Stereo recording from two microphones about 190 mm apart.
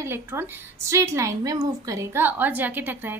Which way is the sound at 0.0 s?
10° right (ahead or behind).